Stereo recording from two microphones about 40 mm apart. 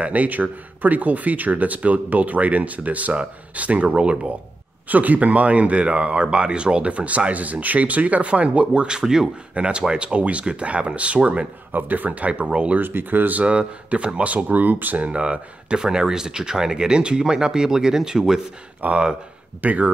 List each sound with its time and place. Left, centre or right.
0.0 s speech: right
4.8 s speech: right
8.9 s speech: centre
9.5 s speech: right
11.7 s speech: right
12.4 s speech: right
12.8 s speech: right
13.5 s speech: right
15.0 s speech: right
15.8 s speech: centre
18.8 s speech: right